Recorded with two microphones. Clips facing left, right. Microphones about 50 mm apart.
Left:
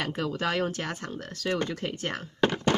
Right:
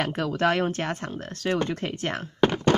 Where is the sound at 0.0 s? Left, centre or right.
Right.